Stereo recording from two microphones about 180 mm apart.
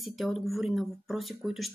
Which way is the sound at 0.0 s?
Centre (ahead or behind).